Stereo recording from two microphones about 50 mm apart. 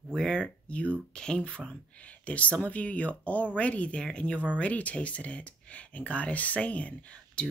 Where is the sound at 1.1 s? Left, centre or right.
Centre.